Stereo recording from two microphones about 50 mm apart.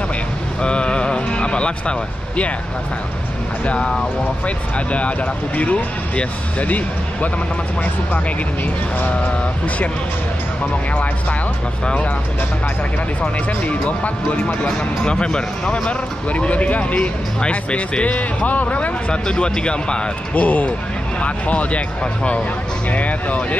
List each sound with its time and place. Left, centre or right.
0.6 s speech: left
3.6 s speech: left
11.8 s speech: centre
13.2 s speech: left
14.6 s speech: centre
16.3 s speech: left
19.2 s speech: centre
20.4 s speech: left